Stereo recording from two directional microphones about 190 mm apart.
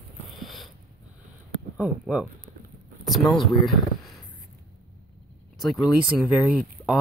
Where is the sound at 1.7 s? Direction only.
5° right (ahead or behind).